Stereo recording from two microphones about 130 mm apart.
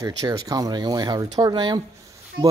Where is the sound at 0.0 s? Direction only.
25° right (ahead or behind).